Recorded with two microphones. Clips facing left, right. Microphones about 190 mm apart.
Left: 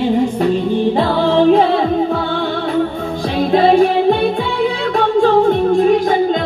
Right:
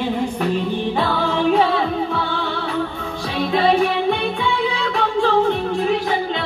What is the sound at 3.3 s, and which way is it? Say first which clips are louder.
Music: left 6 dB; 40° left (ahead or behind).